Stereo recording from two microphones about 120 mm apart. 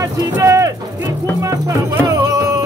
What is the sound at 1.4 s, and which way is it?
Music, 25° right (ahead or behind).